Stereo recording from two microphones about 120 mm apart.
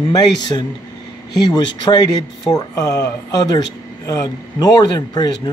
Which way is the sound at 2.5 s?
30° left (ahead or behind).